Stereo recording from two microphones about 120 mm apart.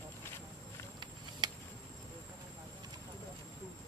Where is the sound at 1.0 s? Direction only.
40° right (ahead or behind).